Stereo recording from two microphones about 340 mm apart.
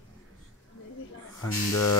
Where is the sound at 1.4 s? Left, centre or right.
Left.